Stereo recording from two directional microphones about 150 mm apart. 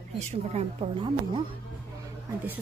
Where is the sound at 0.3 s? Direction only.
45° right (ahead or behind).